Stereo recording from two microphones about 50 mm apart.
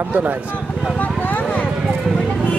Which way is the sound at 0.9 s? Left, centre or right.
Left.